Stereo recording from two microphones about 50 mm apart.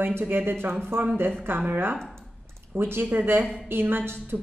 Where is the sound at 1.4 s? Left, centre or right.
Right.